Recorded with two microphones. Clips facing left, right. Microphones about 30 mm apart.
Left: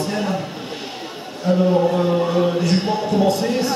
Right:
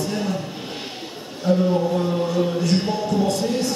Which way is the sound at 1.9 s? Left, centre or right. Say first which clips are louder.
Left 4 dB; left.